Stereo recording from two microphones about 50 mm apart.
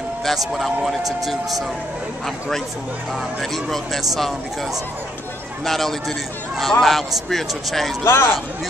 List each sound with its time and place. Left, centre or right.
0.2 s a man's voice: centre
3.3 s a man's voice: centre
5.7 s a man's voice: centre
8.0 s a man's voice: left